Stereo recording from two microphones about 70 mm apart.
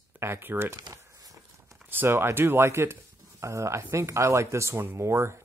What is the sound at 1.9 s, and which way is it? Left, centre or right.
Speech, right.